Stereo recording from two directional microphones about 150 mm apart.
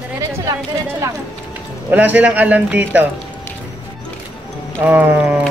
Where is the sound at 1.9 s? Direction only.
10° right (ahead or behind).